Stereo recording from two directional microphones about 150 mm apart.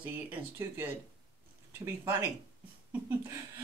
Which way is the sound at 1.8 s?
20° right (ahead or behind).